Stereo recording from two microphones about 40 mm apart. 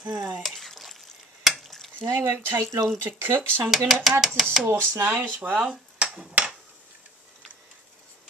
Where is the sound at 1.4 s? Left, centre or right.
Centre.